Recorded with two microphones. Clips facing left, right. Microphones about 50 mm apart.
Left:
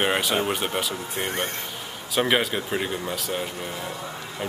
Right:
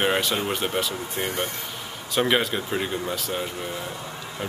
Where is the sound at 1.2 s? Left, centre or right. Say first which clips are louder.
Even; left.